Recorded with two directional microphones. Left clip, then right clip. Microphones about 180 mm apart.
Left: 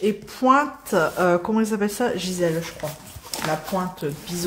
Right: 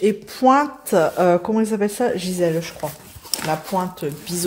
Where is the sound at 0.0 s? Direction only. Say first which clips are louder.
Right 5 dB; 25° right (ahead or behind).